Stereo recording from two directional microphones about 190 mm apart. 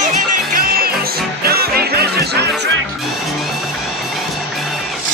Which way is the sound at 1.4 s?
55° right (ahead or behind).